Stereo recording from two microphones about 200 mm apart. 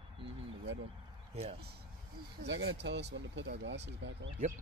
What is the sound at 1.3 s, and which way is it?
Speech, 30° right (ahead or behind).